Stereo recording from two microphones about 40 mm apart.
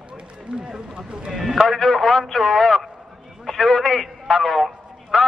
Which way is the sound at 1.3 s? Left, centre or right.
Centre.